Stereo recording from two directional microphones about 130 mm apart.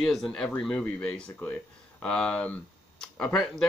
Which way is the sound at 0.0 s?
Centre (ahead or behind).